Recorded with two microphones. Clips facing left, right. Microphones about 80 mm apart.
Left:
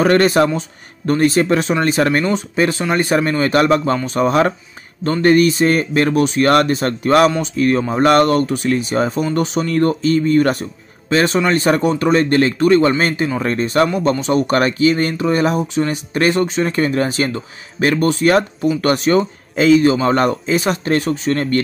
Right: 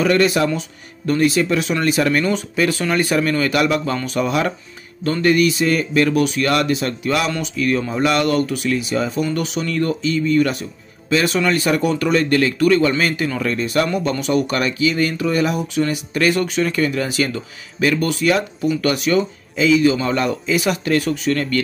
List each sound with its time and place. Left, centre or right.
0.0 s a man's voice: left